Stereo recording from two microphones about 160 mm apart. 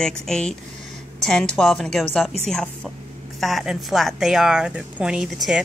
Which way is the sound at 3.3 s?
Centre (ahead or behind).